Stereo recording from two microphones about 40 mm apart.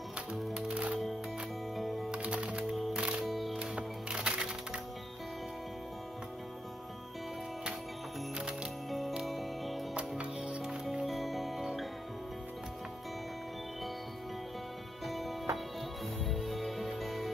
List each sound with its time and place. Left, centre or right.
0.3 s music: right
2.0 s music: right
3.3 s music: centre
3.5 s music: right
9.2 s music: centre
10.6 s music: centre
11.1 s music: centre
15.0 s music: centre